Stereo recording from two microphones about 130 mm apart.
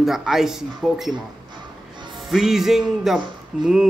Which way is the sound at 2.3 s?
Centre (ahead or behind).